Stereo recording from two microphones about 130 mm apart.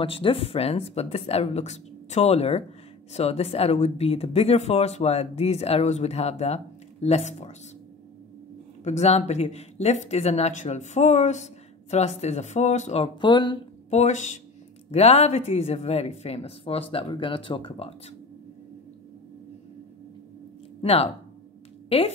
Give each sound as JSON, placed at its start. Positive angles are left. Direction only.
{"t": 0.0, "sound": "speech", "side_deg": 45}
{"t": 8.8, "sound": "speech", "side_deg": 60}
{"t": 13.2, "sound": "speech", "side_deg": 35}
{"t": 13.8, "sound": "speech", "side_deg": 60}
{"t": 14.9, "sound": "speech", "side_deg": 55}
{"t": 20.8, "sound": "a woman's voice", "side_deg": 45}